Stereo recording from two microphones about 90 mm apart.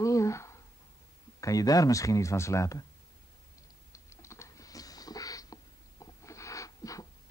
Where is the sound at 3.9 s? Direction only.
35° left (ahead or behind).